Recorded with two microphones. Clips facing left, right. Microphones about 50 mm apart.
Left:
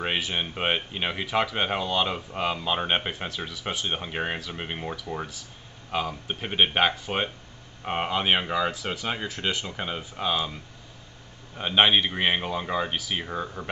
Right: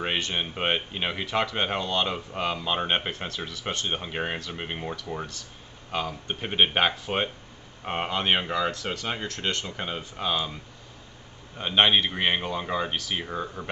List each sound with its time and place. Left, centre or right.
0.0 s speech: centre